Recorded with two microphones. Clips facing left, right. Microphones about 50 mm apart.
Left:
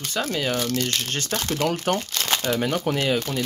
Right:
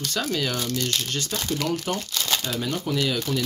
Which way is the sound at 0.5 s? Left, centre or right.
Left.